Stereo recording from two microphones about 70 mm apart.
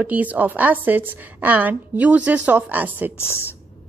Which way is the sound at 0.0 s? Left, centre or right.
Right.